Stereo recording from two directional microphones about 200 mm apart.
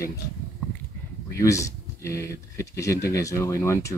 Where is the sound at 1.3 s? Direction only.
15° left (ahead or behind).